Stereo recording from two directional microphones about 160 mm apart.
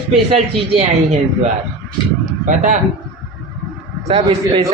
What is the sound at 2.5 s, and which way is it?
Speech, 50° right (ahead or behind).